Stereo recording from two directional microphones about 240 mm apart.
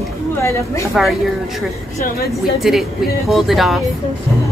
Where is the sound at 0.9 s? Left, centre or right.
Centre.